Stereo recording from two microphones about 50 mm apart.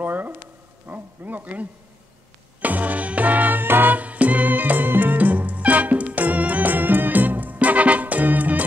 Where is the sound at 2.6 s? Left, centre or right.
Right.